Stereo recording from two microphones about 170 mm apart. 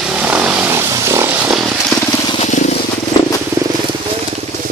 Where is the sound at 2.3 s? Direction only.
45° left (ahead or behind).